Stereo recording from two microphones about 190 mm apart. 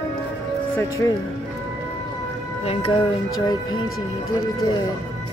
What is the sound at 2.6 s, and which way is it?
Speech, 30° left (ahead or behind).